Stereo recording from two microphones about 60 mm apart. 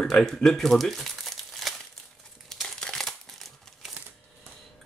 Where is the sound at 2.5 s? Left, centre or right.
Centre.